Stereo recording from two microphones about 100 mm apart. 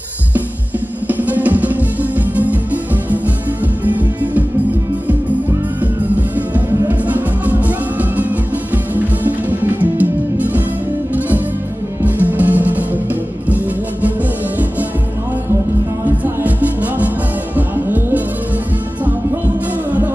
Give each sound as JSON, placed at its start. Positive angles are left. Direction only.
{"t": 1.0, "sound": "music", "side_deg": -15}
{"t": 6.9, "sound": "music", "side_deg": -15}
{"t": 16.4, "sound": "music", "side_deg": -15}